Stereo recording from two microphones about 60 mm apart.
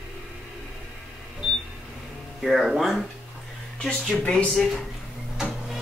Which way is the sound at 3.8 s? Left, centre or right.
Centre.